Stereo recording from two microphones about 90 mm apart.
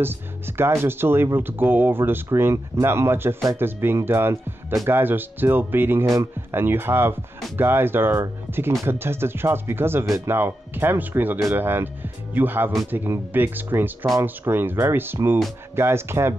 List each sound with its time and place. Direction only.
0.0 s speech: 25° right (ahead or behind)